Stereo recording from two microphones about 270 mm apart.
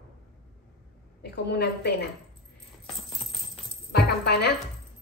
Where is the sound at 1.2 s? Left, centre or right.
Left.